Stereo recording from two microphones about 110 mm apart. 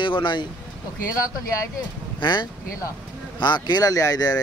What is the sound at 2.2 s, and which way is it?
Speech, 45° left (ahead or behind).